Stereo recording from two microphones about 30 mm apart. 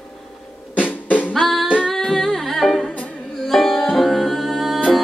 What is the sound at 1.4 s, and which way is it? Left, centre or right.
Music, centre.